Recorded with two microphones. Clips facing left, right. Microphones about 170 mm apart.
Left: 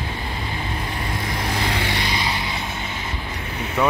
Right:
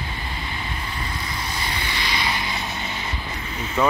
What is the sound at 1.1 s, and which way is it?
Vehicle, 55° left (ahead or behind).